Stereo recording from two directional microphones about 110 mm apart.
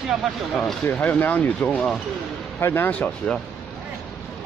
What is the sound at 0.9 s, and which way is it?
Speech, 15° left (ahead or behind).